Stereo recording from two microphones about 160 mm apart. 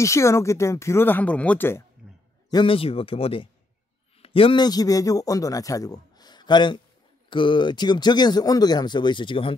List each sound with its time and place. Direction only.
0.0 s speech: 20° left (ahead or behind)
2.5 s a man's voice: 35° left (ahead or behind)